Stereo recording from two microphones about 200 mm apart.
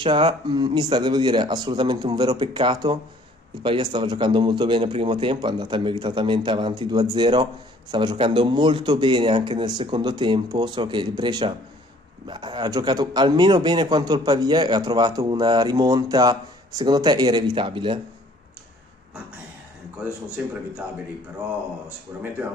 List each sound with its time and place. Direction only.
0.0 s a man's voice: 25° right (ahead or behind)
21.8 s speech: 10° right (ahead or behind)